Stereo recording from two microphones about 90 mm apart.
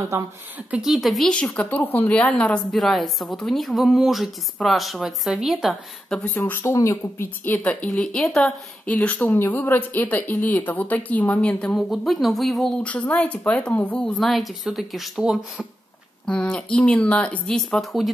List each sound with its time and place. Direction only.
0.7 s a woman's voice: 5° right (ahead or behind)
1.3 s a woman's voice: 10° left (ahead or behind); by 5.8 s 5° right (ahead or behind)
6.0 s speech: 10° left (ahead or behind)
6.3 s speech: 25° left (ahead or behind)
7.4 s a woman's voice: 20° left (ahead or behind)
11.7 s a woman's voice: centre (ahead or behind)
12.8 s a woman's voice: 15° left (ahead or behind); by 15.6 s 5° right (ahead or behind)
16.3 s a woman's voice: 10° left (ahead or behind)